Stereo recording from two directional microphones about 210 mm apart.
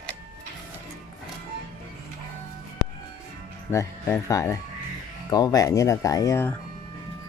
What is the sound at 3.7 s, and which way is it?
Speech, 15° left (ahead or behind).